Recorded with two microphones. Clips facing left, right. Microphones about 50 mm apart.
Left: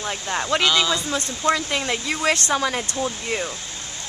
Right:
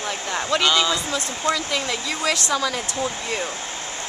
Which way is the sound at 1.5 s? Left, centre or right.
Left.